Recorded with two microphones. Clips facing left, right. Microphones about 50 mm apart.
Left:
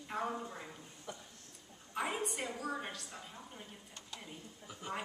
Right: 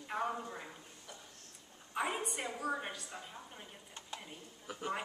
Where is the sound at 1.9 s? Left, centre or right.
Centre.